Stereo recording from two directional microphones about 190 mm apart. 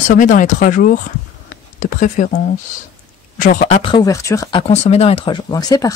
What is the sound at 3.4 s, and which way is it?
Speech, 45° left (ahead or behind).